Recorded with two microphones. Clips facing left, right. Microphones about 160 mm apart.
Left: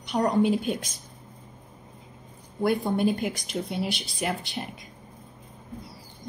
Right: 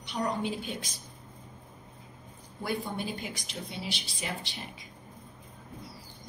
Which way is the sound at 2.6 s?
55° left (ahead or behind).